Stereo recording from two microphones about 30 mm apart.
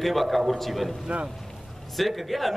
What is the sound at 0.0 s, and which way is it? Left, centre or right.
Speech, centre.